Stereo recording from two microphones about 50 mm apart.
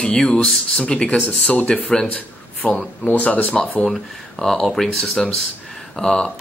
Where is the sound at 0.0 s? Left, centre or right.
Centre.